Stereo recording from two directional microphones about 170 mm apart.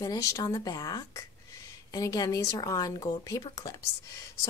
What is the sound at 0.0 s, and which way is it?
A woman's voice, 20° left (ahead or behind).